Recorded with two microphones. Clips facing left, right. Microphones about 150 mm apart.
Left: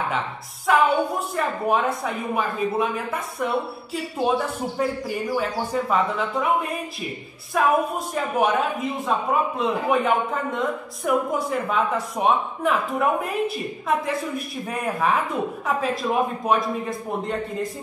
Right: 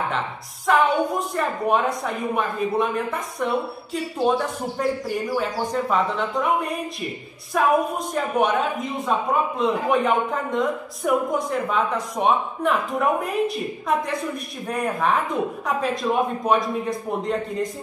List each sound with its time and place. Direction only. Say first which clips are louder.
0.7 s a man's voice: even; centre (ahead or behind)